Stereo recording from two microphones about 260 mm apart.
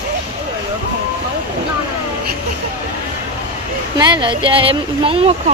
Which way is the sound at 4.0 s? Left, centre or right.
Centre.